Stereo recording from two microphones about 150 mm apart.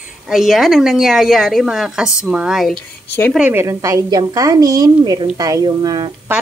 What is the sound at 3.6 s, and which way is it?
A woman's voice, 20° right (ahead or behind).